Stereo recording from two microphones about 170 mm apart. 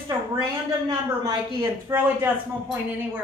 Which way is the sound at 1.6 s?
15° right (ahead or behind).